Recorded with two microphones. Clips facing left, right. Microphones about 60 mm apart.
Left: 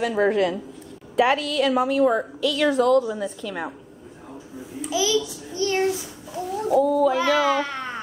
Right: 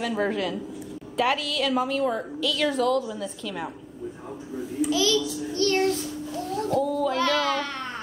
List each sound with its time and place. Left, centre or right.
0.0 s a woman's voice: centre
2.9 s a woman's voice: left
3.4 s a woman's voice: centre
4.9 s child singing: centre